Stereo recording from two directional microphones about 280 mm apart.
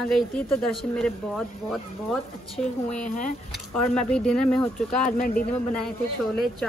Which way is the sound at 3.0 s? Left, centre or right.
Left.